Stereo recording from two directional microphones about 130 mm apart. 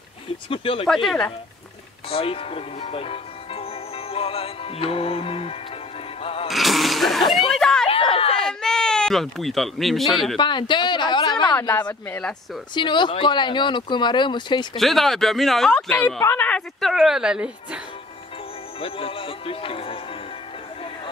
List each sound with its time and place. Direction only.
0.5 s speech: 45° left (ahead or behind)
0.8 s speech: centre (ahead or behind)
2.0 s speech: 45° left (ahead or behind)
6.5 s a sound: centre (ahead or behind)
7.9 s a sound: 45° left (ahead or behind)
8.5 s sheep: 5° left (ahead or behind)
10.3 s a sound: 35° left (ahead or behind)
11.6 s speech: 30° left (ahead or behind)
11.9 s speech: 15° left (ahead or behind)
12.7 s speech: 35° left (ahead or behind)
14.8 s speech: centre (ahead or behind)
16.8 s speech: 5° right (ahead or behind)
18.8 s speech: 45° left (ahead or behind)